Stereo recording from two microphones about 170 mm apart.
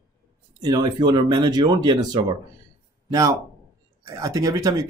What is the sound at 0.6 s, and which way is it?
Speech, 20° right (ahead or behind).